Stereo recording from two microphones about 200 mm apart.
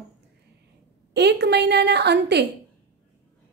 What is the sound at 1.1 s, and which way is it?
A woman's voice, 55° right (ahead or behind).